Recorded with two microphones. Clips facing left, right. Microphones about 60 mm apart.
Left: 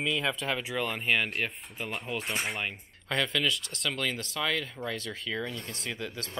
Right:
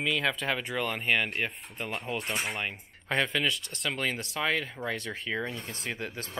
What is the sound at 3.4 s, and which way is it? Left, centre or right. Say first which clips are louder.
Speech: even; centre.